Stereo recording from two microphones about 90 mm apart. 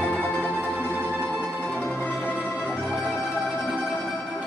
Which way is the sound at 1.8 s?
20° left (ahead or behind).